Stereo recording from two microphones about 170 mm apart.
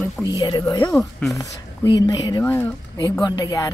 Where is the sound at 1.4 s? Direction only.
25° left (ahead or behind).